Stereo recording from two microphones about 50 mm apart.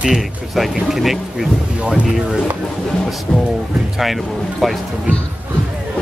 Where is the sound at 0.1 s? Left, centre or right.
Centre.